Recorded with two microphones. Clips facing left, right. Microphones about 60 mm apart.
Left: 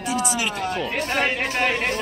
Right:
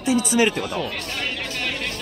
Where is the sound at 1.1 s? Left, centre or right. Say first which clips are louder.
Left 6 dB; left.